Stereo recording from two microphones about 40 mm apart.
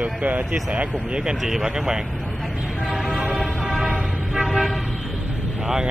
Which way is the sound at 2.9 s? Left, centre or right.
Centre.